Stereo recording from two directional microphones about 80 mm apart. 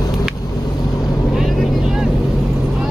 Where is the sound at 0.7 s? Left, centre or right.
Left.